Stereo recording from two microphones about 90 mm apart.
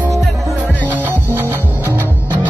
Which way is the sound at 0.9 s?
20° right (ahead or behind).